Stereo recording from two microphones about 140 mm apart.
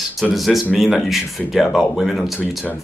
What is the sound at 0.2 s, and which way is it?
A man's voice, centre (ahead or behind).